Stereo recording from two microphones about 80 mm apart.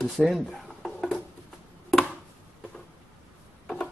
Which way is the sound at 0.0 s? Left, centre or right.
Centre.